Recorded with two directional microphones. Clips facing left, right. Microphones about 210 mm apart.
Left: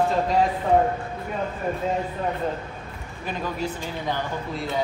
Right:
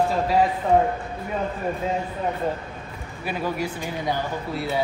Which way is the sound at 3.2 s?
10° right (ahead or behind).